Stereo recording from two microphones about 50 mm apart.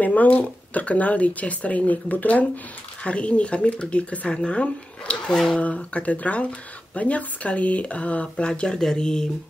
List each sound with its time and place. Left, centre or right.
0.0 s speech: left
5.3 s speech: centre
5.6 s speech: left